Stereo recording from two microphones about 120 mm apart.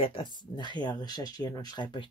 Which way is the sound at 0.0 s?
45° left (ahead or behind).